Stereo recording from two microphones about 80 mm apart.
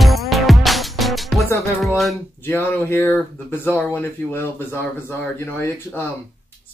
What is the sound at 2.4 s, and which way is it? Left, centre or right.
Speech, left.